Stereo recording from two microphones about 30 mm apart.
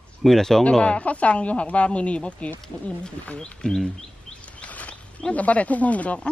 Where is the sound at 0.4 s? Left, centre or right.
Centre.